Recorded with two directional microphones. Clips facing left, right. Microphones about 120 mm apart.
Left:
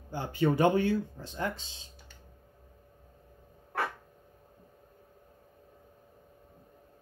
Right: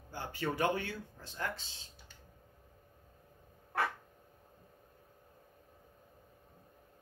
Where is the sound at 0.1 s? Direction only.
20° left (ahead or behind).